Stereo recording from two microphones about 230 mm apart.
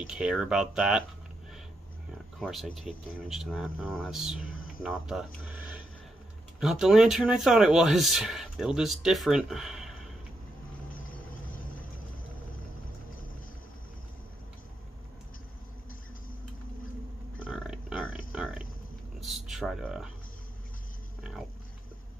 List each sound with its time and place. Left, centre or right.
0.0 s speech: centre
2.3 s speech: centre
10.9 s vehicle: left
17.5 s pig: centre
18.3 s burping: centre
19.1 s a sound: centre
21.2 s a sound: centre